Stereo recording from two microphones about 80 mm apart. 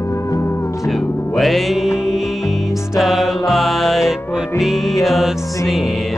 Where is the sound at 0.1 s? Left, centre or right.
Left.